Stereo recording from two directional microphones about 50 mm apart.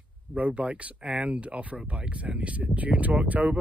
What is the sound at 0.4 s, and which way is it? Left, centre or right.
Speech, right.